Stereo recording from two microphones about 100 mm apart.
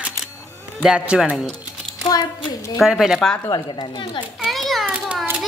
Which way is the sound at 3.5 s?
45° left (ahead or behind).